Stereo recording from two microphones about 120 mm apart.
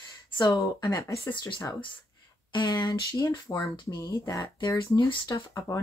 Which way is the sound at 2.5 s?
30° left (ahead or behind).